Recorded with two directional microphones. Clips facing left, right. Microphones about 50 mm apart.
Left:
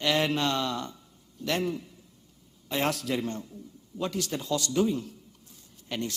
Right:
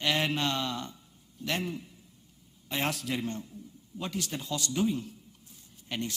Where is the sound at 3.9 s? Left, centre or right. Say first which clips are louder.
Left 4 dB; right.